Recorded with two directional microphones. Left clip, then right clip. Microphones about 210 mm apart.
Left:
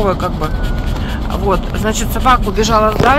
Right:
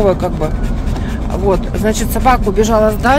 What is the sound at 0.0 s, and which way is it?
Speech, 15° right (ahead or behind).